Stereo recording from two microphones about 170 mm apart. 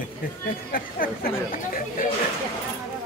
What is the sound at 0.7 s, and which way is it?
Speech, 60° left (ahead or behind).